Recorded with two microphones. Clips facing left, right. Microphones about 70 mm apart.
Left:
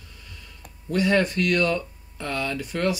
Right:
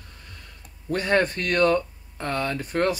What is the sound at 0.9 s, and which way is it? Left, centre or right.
Speech, right.